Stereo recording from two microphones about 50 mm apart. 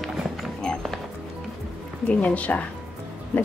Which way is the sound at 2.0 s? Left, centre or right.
Left.